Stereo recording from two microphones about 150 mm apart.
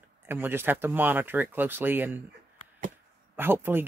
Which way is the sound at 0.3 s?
15° right (ahead or behind).